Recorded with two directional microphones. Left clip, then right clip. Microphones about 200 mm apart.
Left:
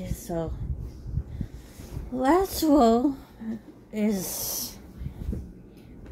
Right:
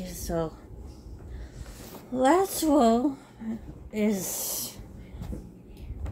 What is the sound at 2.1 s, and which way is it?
A woman's voice, 15° left (ahead or behind).